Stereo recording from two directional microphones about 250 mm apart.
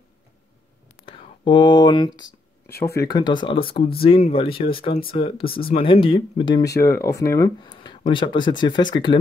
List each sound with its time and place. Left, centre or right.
1.0 s whispering: centre
3.1 s speech: centre